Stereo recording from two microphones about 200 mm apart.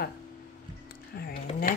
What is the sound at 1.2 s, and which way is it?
Speech, 45° left (ahead or behind).